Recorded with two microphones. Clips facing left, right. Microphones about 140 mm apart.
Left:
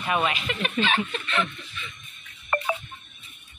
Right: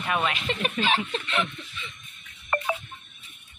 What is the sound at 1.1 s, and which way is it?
Speech, 20° right (ahead or behind).